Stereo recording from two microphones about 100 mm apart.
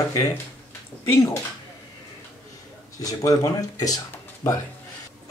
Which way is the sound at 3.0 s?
35° left (ahead or behind).